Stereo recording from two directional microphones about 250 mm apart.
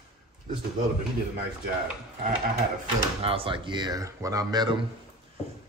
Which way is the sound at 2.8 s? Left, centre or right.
Right.